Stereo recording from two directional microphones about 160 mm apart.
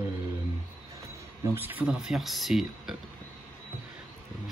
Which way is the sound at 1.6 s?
10° right (ahead or behind).